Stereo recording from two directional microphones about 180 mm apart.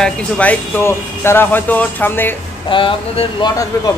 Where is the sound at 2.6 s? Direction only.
30° left (ahead or behind).